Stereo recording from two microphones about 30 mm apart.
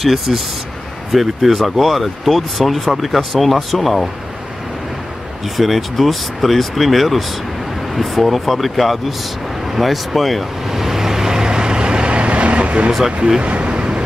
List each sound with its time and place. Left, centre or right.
0.0 s speech: centre
5.6 s speech: centre
10.7 s vehicle: centre; by 14.0 s right